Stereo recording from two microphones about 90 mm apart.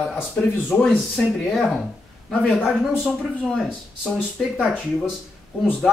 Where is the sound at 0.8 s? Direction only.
5° left (ahead or behind).